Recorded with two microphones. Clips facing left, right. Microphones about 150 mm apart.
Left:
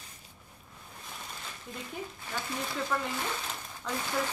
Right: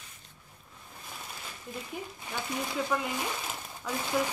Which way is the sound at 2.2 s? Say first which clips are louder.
Right 2 dB; 15° right (ahead or behind).